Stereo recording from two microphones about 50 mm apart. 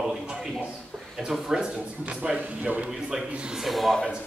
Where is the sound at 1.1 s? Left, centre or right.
Centre.